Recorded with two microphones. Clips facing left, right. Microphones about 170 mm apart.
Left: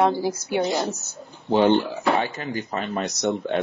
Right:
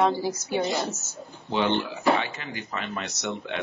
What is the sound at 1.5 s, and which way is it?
Speech, 40° left (ahead or behind).